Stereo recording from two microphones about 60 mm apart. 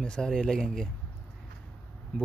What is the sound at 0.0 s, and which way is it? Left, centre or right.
Speech, centre.